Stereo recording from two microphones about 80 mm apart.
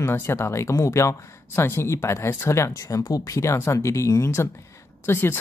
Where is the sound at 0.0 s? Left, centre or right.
Left.